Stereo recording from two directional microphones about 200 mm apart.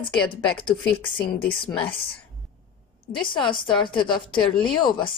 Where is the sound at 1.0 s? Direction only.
25° left (ahead or behind).